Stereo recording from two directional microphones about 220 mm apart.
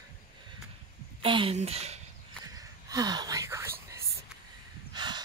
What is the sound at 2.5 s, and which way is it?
Whispering, 15° right (ahead or behind).